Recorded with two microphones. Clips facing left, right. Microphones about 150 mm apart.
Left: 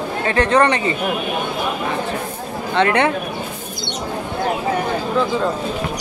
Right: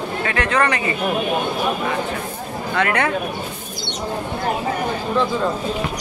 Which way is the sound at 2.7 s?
25° left (ahead or behind).